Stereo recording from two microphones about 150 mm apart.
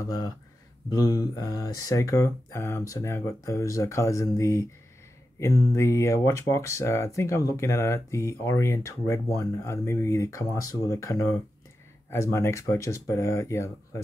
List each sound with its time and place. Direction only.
0.8 s speech: 25° left (ahead or behind)